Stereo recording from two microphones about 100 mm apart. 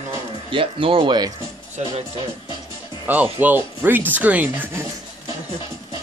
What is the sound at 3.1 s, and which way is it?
Speech, 15° right (ahead or behind).